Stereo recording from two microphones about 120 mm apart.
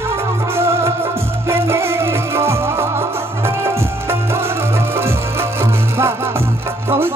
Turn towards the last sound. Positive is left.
turn(degrees=-20)  # may be behind; listen again after turning